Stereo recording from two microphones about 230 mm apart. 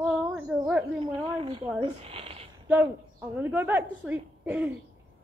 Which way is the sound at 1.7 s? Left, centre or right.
Right.